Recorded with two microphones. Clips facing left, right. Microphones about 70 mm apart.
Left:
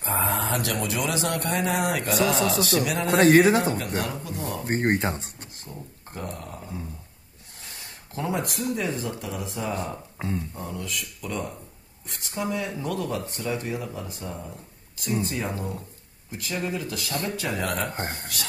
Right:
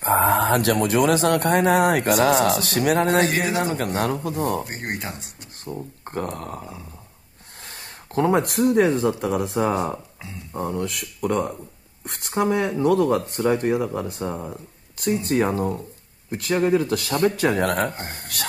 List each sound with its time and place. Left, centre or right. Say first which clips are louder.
0.0 s speech: right 8 dB; right
3.2 s speech: left 4 dB; left
3.7 s speech: right 5 dB; right
4.6 s speech: left 7 dB; left
6.0 s speech: right 7 dB; right